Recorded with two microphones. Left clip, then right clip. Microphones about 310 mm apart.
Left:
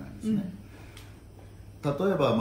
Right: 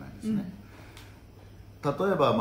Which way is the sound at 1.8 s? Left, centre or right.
Centre.